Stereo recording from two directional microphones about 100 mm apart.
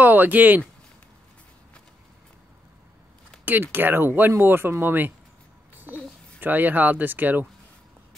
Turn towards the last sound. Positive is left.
turn(degrees=-15)  # may be behind; listen again after turning